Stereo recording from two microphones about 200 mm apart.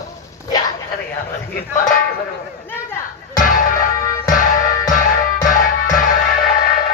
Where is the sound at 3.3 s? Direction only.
40° left (ahead or behind).